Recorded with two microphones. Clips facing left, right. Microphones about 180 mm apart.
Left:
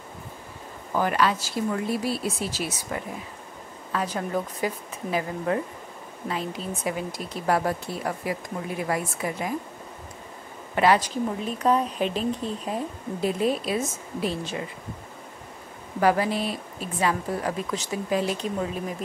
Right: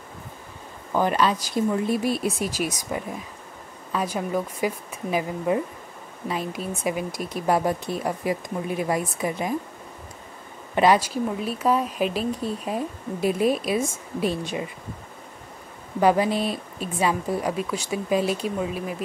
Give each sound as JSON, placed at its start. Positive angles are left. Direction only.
{"t": 0.9, "sound": "speech", "side_deg": -20}
{"t": 10.7, "sound": "speech", "side_deg": -20}
{"t": 11.0, "sound": "speech", "side_deg": -10}
{"t": 16.0, "sound": "speech", "side_deg": -20}